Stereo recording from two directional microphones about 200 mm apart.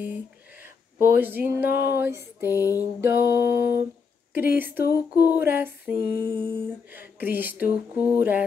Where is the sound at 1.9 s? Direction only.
10° right (ahead or behind).